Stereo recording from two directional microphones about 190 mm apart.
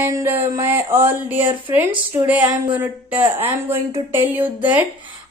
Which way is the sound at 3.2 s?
30° right (ahead or behind).